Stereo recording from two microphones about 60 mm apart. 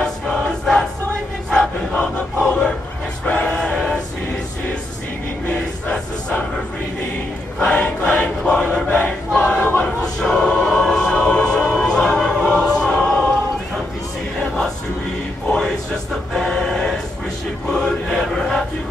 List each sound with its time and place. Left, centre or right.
0.4 s choir: centre
2.4 s crowd: left
3.3 s a sound: left
5.5 s a sound: left
7.6 s choir: left
10.2 s music: centre
15.4 s a sound: centre
16.3 s music: centre
17.6 s chant: centre